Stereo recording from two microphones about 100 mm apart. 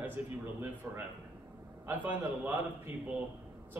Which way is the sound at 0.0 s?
20° right (ahead or behind).